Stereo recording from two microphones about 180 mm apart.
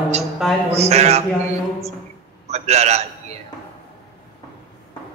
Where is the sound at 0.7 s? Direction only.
35° right (ahead or behind).